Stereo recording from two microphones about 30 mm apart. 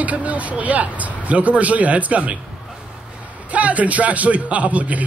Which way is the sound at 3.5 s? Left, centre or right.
Right.